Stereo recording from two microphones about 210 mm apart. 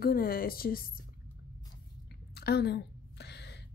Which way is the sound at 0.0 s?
45° left (ahead or behind).